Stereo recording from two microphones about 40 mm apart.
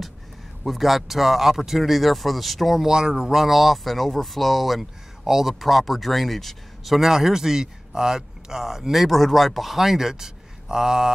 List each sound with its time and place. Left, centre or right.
0.7 s speech: centre
2.9 s speech: centre
5.2 s speech: centre
5.5 s speech: centre